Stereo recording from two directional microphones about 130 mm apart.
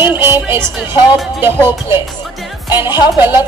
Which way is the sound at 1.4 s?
15° right (ahead or behind).